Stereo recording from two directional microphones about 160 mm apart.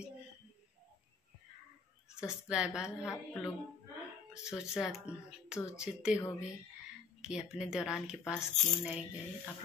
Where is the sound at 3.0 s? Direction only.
15° left (ahead or behind).